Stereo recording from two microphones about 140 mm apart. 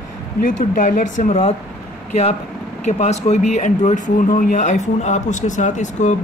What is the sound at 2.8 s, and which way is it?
Speech, 55° left (ahead or behind).